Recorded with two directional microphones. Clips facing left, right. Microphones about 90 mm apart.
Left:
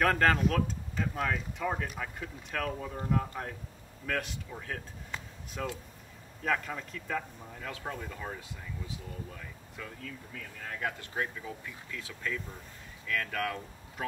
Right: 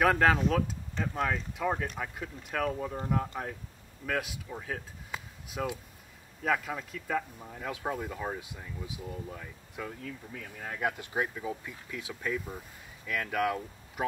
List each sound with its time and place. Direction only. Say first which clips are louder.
0.0 s speech: right 2 dB; 5° right (ahead or behind)